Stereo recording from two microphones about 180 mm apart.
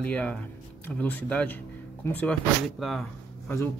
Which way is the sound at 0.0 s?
5° left (ahead or behind).